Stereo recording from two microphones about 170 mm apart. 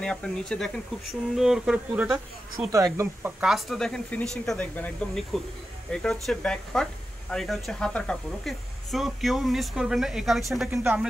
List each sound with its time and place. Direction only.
0.0 s speech: 5° left (ahead or behind)
2.7 s speech: 15° right (ahead or behind)
3.4 s speech: centre (ahead or behind)
10.7 s speech: 15° right (ahead or behind)